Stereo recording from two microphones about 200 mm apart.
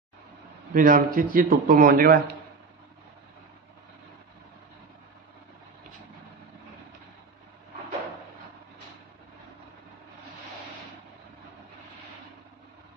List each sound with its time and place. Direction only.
0.7 s speech: 45° right (ahead or behind)